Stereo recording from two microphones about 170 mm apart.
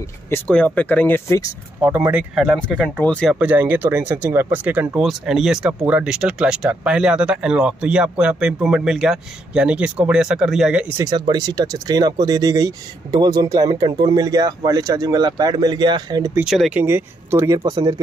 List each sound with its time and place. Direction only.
0.3 s speech: 5° left (ahead or behind)
1.8 s speech: 10° right (ahead or behind); by 3.3 s 5° left (ahead or behind)
3.3 s speech: 10° right (ahead or behind)
11.0 s speech: 25° right (ahead or behind)
16.3 s speech: 5° right (ahead or behind)
17.6 s speech: 25° right (ahead or behind)